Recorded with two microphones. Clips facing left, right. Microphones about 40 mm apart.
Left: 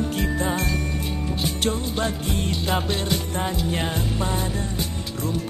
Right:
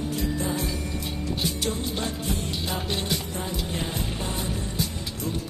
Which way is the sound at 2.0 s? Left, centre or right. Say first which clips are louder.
Left 4 dB; left.